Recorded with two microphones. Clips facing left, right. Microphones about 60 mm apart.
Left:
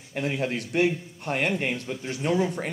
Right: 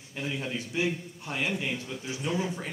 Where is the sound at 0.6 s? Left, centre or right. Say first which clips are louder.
Left 6 dB; left.